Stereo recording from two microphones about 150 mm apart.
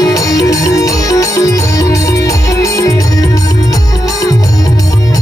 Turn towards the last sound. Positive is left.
turn(degrees=25)  # may be behind; listen again after turning